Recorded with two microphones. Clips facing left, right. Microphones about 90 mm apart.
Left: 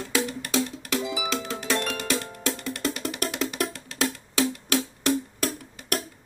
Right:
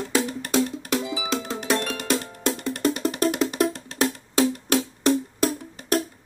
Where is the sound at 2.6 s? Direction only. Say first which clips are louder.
Right 6 dB; 35° right (ahead or behind).